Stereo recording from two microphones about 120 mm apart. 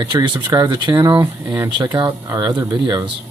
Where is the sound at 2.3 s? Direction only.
35° right (ahead or behind).